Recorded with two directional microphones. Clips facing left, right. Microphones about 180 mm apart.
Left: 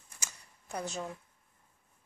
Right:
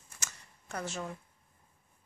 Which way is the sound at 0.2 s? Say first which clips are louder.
Right 1 dB; 15° left (ahead or behind).